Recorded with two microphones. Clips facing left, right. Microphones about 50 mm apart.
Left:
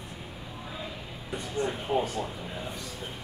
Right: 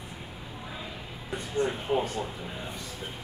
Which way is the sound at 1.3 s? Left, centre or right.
Centre.